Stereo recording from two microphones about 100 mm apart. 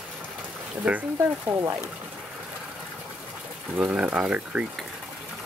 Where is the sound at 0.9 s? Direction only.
5° right (ahead or behind).